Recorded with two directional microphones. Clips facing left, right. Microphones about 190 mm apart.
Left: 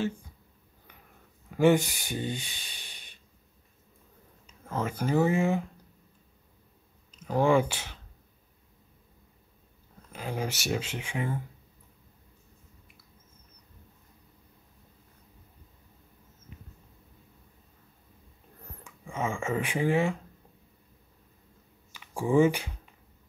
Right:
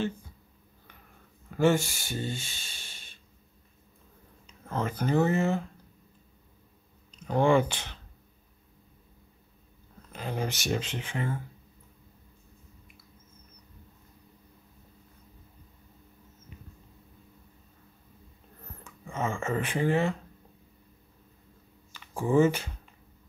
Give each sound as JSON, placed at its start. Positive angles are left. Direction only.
{"t": 1.5, "sound": "speech", "side_deg": 15}
{"t": 4.5, "sound": "speech", "side_deg": 10}
{"t": 7.1, "sound": "speech", "side_deg": 5}
{"t": 10.1, "sound": "speech", "side_deg": 10}
{"t": 18.9, "sound": "speech", "side_deg": 10}
{"t": 21.9, "sound": "speech", "side_deg": 10}